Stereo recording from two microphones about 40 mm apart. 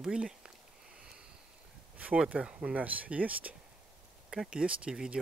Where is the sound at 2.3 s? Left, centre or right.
Right.